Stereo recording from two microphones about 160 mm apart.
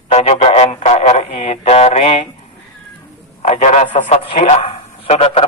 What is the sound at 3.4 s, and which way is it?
A man's voice, 45° left (ahead or behind).